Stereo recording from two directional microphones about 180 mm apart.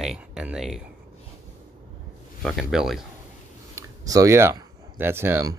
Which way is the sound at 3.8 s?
20° right (ahead or behind).